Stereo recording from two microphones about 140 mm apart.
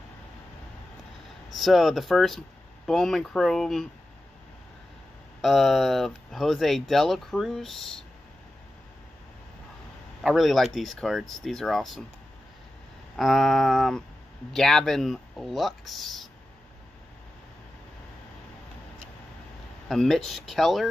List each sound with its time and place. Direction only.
1.5 s speech: centre (ahead or behind)
5.4 s speech: centre (ahead or behind)
10.2 s speech: centre (ahead or behind)
13.1 s speech: centre (ahead or behind)
19.9 s speech: centre (ahead or behind)